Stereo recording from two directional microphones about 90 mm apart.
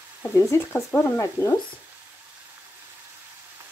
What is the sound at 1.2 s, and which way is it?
Speech, 35° left (ahead or behind).